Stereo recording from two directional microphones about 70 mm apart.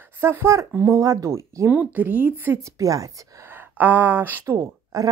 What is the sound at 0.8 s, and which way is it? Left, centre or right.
Speech, right.